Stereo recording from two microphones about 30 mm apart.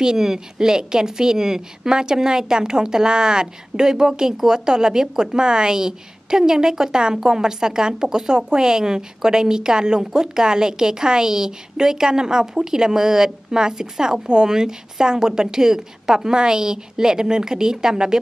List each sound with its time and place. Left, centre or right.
0.0 s a woman's voice: centre